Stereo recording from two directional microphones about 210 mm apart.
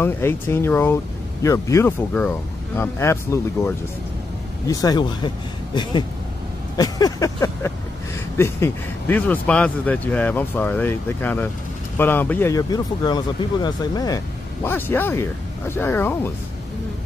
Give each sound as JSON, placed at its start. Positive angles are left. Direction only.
{"t": 0.0, "sound": "speech", "side_deg": 10}
{"t": 6.8, "sound": "vehicle", "side_deg": 15}
{"t": 8.4, "sound": "speech", "side_deg": 10}